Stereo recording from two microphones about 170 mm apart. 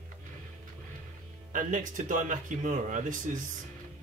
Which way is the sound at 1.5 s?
50° right (ahead or behind).